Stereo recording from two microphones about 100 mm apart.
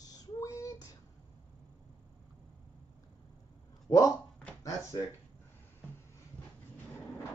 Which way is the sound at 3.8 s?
35° left (ahead or behind).